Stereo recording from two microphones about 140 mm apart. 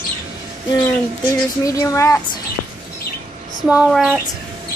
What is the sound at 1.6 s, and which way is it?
Speech, 25° left (ahead or behind).